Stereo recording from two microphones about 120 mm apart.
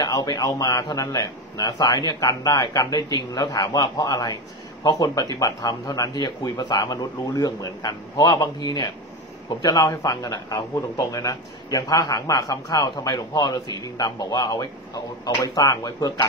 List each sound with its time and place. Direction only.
0.0 s a man's voice: 30° left (ahead or behind)